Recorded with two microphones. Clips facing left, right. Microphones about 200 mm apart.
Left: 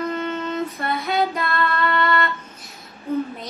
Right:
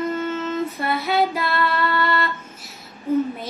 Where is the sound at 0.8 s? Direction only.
5° right (ahead or behind).